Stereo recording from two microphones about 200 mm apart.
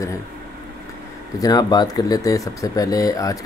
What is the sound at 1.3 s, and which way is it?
Speech, 20° left (ahead or behind).